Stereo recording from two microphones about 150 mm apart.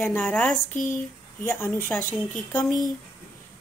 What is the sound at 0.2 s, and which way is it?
A woman's voice, 5° left (ahead or behind).